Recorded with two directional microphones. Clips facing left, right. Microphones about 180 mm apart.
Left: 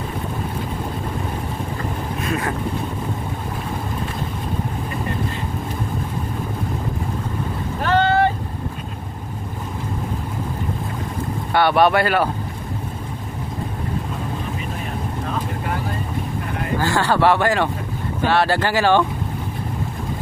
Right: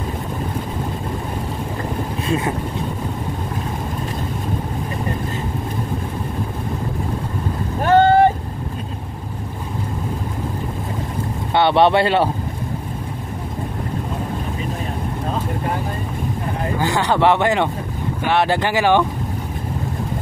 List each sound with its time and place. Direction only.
2.2 s speech: 25° right (ahead or behind)
7.8 s boat: 45° right (ahead or behind)
11.5 s speech: 25° right (ahead or behind)
16.8 s speech: 20° right (ahead or behind)